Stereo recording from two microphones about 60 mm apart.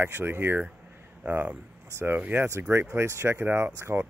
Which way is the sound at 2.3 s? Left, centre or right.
Right.